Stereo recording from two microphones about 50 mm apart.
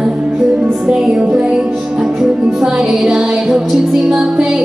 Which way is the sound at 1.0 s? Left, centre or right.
Centre.